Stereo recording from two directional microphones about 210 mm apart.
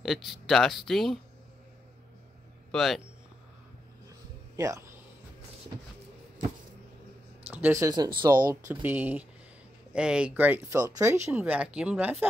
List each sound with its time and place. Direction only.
0.0 s speech: centre (ahead or behind)
2.7 s speech: centre (ahead or behind)
4.6 s speech: 15° right (ahead or behind)
7.4 s speech: 10° right (ahead or behind)
8.6 s speech: 10° right (ahead or behind)